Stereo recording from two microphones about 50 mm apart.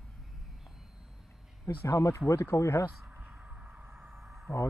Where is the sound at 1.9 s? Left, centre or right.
Left.